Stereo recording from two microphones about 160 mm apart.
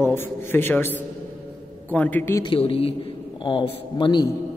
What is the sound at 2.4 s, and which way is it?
A woman's voice, 35° left (ahead or behind).